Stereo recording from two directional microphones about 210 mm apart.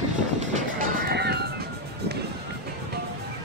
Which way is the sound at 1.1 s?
50° right (ahead or behind).